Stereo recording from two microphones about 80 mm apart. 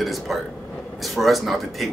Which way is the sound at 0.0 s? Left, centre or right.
Centre.